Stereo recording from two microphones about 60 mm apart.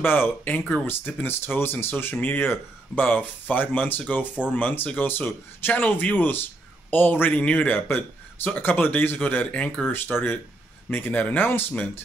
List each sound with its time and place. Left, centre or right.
0.0 s a man's voice: left; by 10.3 s centre
10.9 s a man's voice: left